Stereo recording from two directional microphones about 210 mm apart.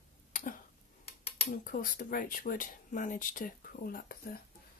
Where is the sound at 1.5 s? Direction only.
40° left (ahead or behind).